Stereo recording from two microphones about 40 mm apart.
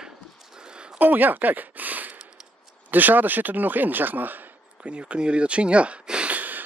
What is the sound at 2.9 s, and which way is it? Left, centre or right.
Speech, right.